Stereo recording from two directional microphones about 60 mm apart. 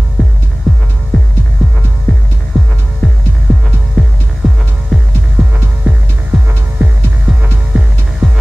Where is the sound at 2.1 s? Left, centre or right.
Left.